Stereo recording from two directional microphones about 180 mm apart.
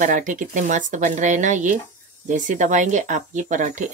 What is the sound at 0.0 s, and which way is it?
Speech, 45° right (ahead or behind).